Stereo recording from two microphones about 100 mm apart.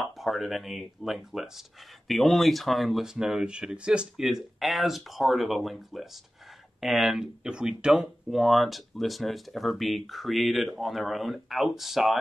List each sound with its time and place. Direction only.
0.2 s speech: centre (ahead or behind)